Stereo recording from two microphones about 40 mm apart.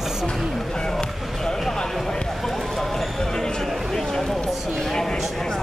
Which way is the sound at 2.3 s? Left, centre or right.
Centre.